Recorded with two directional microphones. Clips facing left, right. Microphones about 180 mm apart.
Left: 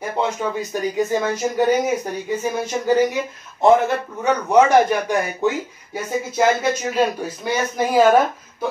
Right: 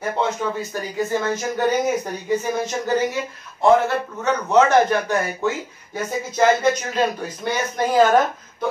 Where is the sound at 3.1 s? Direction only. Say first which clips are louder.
Left 2 dB; 20° left (ahead or behind).